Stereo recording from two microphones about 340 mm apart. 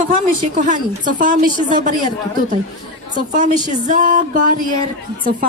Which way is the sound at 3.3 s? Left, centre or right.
Right.